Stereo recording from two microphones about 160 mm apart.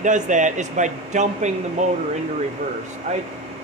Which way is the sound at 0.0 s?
50° right (ahead or behind).